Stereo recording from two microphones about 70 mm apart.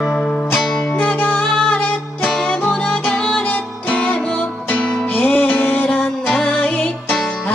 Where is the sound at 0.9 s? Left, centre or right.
Left.